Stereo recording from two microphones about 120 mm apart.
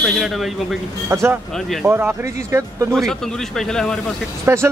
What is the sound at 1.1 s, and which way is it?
Speech, 20° right (ahead or behind).